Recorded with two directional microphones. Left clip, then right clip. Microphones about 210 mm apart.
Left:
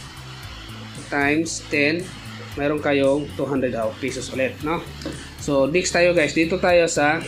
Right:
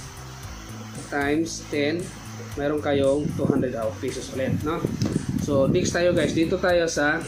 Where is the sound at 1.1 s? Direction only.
30° left (ahead or behind).